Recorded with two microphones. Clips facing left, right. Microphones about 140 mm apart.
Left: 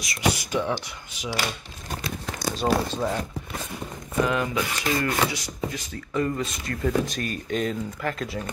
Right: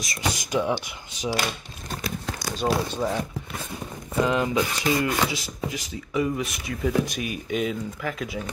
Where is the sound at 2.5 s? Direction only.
Centre (ahead or behind).